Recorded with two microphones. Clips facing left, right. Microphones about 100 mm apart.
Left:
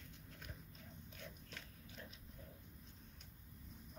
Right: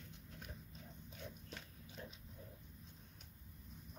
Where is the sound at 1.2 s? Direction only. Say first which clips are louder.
Right 4 dB; 20° right (ahead or behind).